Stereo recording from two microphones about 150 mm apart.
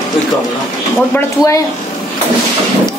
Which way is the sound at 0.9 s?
20° left (ahead or behind).